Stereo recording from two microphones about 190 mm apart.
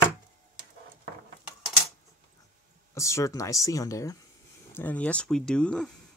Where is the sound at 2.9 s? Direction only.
15° left (ahead or behind).